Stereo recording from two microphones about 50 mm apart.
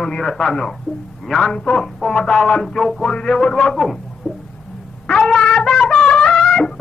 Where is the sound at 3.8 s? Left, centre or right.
Centre.